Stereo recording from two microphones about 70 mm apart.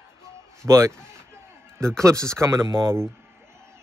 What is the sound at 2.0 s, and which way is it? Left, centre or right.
A man's voice, right.